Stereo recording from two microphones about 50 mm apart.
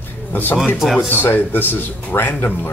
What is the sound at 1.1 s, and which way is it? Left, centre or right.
A man's voice, left.